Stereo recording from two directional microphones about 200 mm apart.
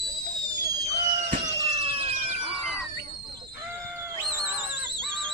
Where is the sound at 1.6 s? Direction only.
30° right (ahead or behind).